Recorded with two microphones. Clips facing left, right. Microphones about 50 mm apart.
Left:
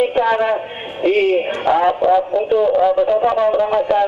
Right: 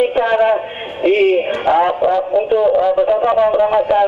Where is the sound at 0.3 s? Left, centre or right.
Centre.